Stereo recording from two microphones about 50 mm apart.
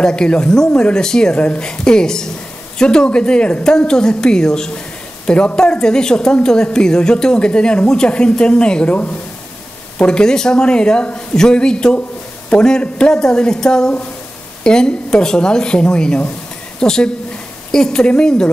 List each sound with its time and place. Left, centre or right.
0.0 s a woman's voice: centre
9.9 s a woman's voice: centre